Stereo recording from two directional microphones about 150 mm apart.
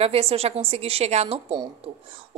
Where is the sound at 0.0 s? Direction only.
40° right (ahead or behind).